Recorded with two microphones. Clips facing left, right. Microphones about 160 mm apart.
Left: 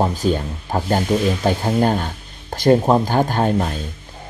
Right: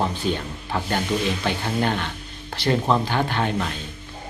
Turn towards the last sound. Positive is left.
turn(degrees=40)  # may be behind; listen again after turning